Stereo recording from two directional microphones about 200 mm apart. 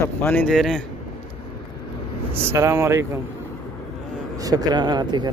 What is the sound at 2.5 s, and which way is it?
Speech, 15° right (ahead or behind).